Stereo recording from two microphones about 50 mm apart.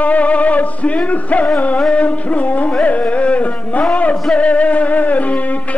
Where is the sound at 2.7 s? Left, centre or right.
Left.